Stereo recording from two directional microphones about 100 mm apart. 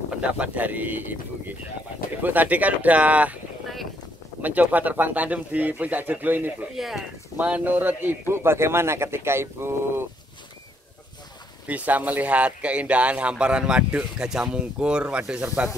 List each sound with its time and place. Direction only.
0.2 s speech: 15° right (ahead or behind)
2.2 s speech: 15° right (ahead or behind)
4.4 s speech: 15° right (ahead or behind)
6.7 s speech: 5° right (ahead or behind)
7.3 s a man's voice: 15° right (ahead or behind)
11.6 s speech: 15° right (ahead or behind)